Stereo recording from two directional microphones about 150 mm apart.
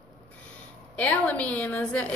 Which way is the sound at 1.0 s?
10° left (ahead or behind).